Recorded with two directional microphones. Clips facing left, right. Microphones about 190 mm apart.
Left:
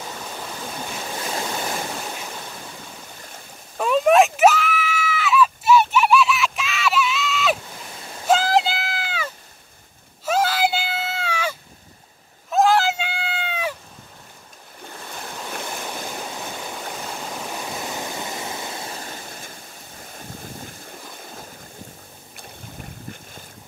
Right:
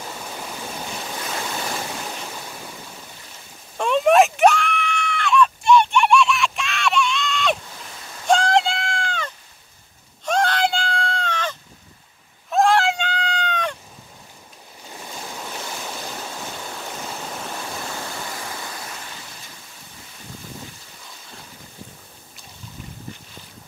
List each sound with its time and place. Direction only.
3.7 s screaming: 5° left (ahead or behind)
8.3 s a sound: 5° left (ahead or behind)
12.4 s cat: centre (ahead or behind)
17.6 s waterfall: 15° left (ahead or behind); by 19.5 s 45° left (ahead or behind)